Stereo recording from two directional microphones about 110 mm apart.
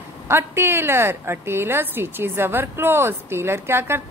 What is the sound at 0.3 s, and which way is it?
Speech, 20° right (ahead or behind).